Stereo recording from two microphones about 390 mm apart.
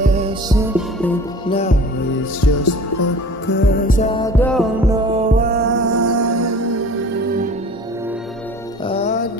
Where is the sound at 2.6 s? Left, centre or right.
Left.